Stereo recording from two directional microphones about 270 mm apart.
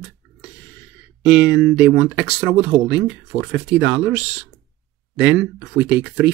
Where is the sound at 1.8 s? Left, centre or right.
Centre.